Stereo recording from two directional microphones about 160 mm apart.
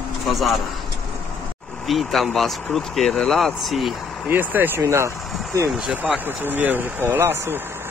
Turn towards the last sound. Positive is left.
turn(degrees=-15)  # may be behind; listen again after turning